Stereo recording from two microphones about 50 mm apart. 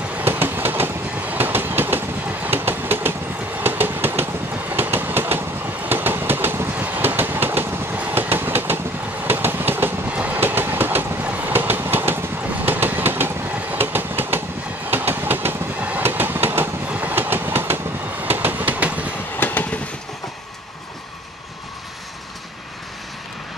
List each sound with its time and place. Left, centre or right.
0.2 s train: right
1.1 s train: right
6.8 s train: right
10.0 s train: right
10.4 s train: right
11.2 s train: right
11.5 s train: right
16.8 s train: right
18.2 s vehicle: right
19.4 s train: left